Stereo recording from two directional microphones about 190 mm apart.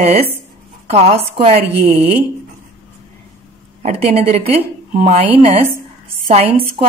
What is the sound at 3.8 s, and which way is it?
A woman's voice, 35° right (ahead or behind).